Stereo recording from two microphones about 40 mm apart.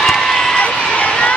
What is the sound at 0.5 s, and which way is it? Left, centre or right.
Run, left.